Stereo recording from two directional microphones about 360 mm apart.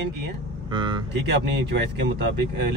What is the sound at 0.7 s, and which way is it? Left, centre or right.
Speech, centre.